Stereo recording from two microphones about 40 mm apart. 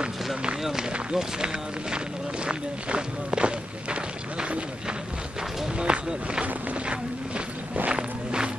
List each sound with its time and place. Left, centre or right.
0.4 s run: centre
1.1 s speech: centre
6.4 s a sound: right
7.9 s walk: right